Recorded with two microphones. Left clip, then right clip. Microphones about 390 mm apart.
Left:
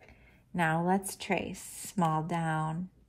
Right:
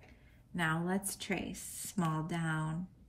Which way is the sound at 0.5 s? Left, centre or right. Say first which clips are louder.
Left 6 dB; centre.